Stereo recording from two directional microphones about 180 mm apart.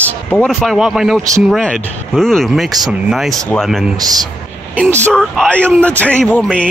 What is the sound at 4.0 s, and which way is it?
Speech, 20° right (ahead or behind).